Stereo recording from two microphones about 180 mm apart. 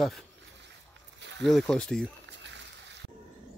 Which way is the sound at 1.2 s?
80° right.